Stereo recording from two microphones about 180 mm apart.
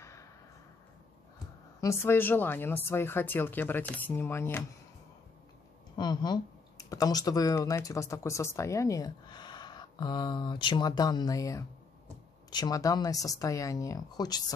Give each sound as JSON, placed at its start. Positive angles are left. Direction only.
{"t": 0.0, "sound": "a sound", "side_deg": 15}
{"t": 1.8, "sound": "speech", "side_deg": 15}
{"t": 5.9, "sound": "speech", "side_deg": 20}